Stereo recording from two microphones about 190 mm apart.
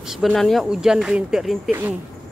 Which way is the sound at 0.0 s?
Centre (ahead or behind).